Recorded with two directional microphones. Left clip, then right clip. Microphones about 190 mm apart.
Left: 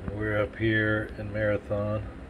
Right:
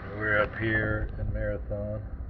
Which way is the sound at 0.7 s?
45° left (ahead or behind).